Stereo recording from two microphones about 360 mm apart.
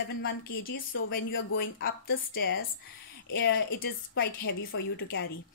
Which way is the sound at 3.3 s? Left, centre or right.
Left.